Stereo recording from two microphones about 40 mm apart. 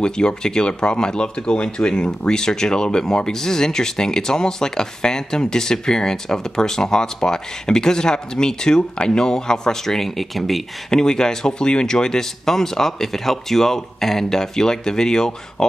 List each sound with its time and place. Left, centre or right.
0.0 s speech: left; by 10.6 s centre
10.9 s speech: centre